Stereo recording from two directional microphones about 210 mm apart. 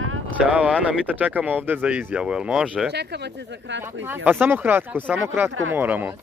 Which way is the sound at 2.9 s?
50° right (ahead or behind).